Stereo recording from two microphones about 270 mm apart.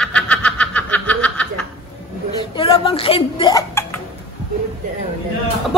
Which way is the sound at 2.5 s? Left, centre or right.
Centre.